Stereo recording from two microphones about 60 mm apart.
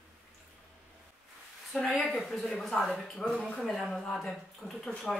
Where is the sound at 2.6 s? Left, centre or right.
Centre.